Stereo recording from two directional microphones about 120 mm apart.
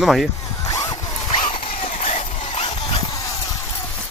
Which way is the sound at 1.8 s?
60° left (ahead or behind).